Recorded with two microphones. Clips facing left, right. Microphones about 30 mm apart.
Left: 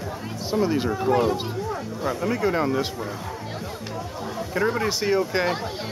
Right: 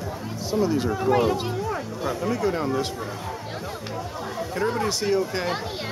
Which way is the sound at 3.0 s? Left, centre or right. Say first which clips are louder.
Even; centre.